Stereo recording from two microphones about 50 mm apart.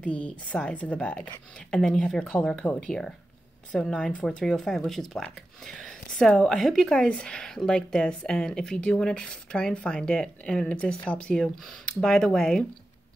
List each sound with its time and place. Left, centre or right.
0.0 s a woman's voice: left
1.6 s a woman's voice: centre